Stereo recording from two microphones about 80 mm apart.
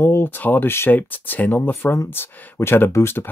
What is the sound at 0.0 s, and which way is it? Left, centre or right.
Speech, left.